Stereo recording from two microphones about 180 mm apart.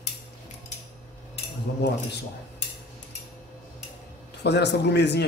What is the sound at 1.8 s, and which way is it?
Speech, 65° left (ahead or behind).